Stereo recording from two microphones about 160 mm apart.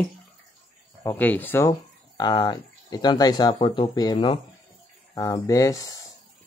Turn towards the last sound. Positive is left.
turn(degrees=20)  # may be behind; listen again after turning